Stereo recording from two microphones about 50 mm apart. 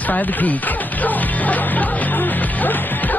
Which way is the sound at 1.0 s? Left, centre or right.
Left.